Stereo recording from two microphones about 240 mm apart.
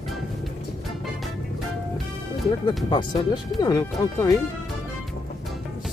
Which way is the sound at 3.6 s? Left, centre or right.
Centre.